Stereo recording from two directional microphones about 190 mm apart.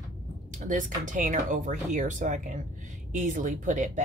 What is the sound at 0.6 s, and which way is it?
Speech, 40° right (ahead or behind).